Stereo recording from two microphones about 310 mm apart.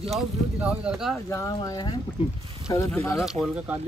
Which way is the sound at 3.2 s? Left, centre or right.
Centre.